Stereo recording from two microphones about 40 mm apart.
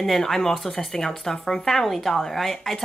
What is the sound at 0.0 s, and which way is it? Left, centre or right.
Speech, centre.